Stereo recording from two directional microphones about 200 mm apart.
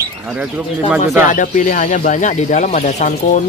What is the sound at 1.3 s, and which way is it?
Speech, 40° left (ahead or behind).